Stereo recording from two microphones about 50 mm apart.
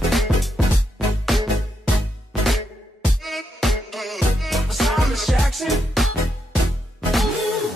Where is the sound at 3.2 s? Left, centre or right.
Centre.